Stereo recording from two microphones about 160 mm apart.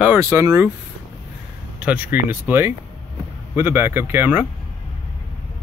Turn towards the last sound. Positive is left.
turn(degrees=-10)  # may be behind; listen again after turning